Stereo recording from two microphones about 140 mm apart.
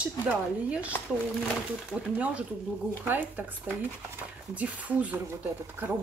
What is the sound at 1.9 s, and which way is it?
Speech, 10° right (ahead or behind).